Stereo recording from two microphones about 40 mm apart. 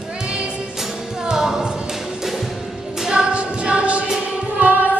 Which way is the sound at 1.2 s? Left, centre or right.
Centre.